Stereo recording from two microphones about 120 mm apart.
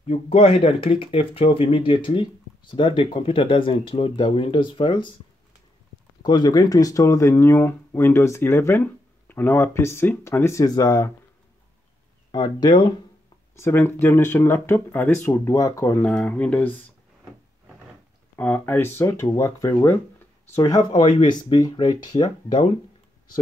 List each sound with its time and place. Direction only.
0.0 s speech: 60° left (ahead or behind); by 5.1 s 40° left (ahead or behind)
6.2 s speech: 35° left (ahead or behind)
12.3 s speech: 35° left (ahead or behind)
13.6 s speech: 20° left (ahead or behind)
15.0 s speech: 10° left (ahead or behind)
15.2 s speech: 25° left (ahead or behind)
16.0 s speech: 5° left (ahead or behind)
18.3 s speech: 15° left (ahead or behind); by 21.1 s 30° left (ahead or behind)
21.2 s speech: 45° left (ahead or behind)